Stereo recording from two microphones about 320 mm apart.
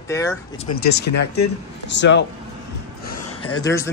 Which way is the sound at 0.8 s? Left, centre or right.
Left.